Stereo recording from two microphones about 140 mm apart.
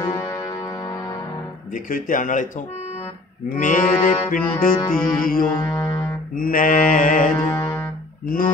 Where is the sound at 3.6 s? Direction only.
70° left (ahead or behind).